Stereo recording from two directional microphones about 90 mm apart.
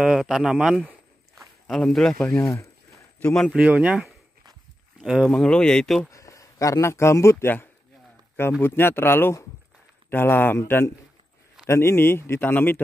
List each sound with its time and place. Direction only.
0.0 s speech: 5° right (ahead or behind); by 3.5 s 15° left (ahead or behind)
3.5 s speech: 15° right (ahead or behind)
5.2 s speech: 10° left (ahead or behind)
6.1 s speech: 35° left (ahead or behind)
11.6 s speech: 30° left (ahead or behind)